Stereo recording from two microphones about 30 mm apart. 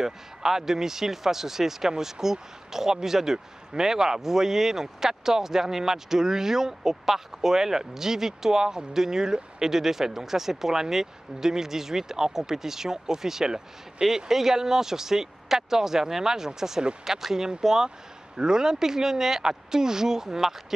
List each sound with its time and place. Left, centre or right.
0.0 s speech: centre